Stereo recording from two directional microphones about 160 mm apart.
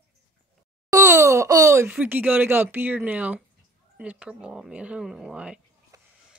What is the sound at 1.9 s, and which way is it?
Speech, 10° right (ahead or behind).